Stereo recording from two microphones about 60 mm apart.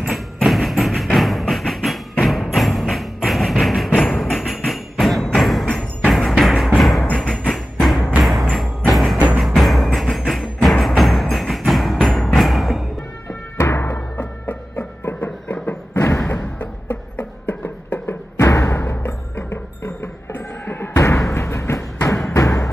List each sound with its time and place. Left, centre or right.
0.0 s music: centre
13.6 s music: left
13.8 s music: left
16.0 s a sound: left
16.5 s a sound: left
18.5 s music: left
18.8 s music: left
20.3 s a sound: left
20.9 s thump: left
21.3 s music: left